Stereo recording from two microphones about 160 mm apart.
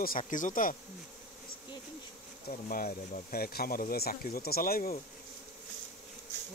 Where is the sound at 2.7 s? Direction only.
60° left (ahead or behind).